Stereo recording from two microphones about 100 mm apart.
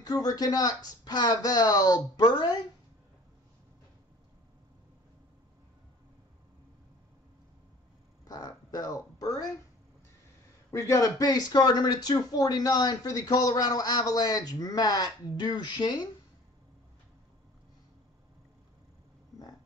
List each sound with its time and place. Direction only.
0.0 s speech: 40° left (ahead or behind)
8.3 s speech: 40° left (ahead or behind)
10.7 s speech: 30° left (ahead or behind); by 16.1 s 50° left (ahead or behind)